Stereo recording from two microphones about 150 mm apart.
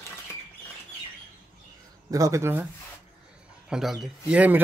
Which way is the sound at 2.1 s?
20° right (ahead or behind).